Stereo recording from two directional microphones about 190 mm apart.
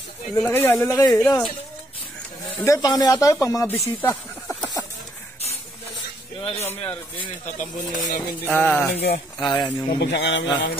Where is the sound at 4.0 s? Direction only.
10° left (ahead or behind).